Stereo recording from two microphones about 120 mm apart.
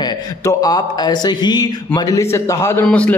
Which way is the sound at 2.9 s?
10° left (ahead or behind).